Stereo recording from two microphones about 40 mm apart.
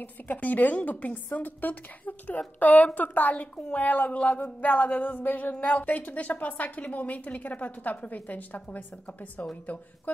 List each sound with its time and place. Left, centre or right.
0.0 s a woman's voice: left
3.3 s a woman's voice: left
3.7 s a sound: left
9.7 s a woman's voice: left